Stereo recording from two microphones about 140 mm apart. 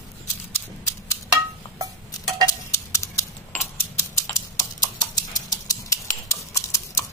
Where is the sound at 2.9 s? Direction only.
20° left (ahead or behind).